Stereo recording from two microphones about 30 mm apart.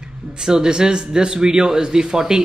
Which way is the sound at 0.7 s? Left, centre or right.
Right.